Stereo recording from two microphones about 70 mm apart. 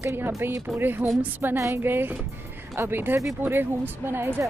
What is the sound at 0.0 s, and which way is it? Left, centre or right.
Speech, right.